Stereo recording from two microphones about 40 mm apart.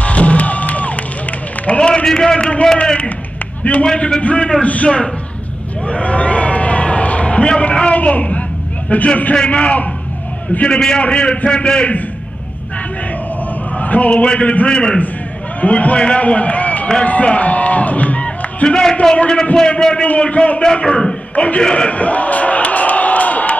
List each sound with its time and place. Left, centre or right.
0.0 s crowd: left
1.8 s a man's voice: left
2.8 s a man's voice: left
4.2 s a man's voice: left
5.9 s a sound: left
7.9 s a man's voice: left
9.3 s a man's voice: left
13.7 s a sound: left
14.1 s a man's voice: left
14.7 s a man's voice: left
15.6 s a man's voice: left
21.4 s a sound: left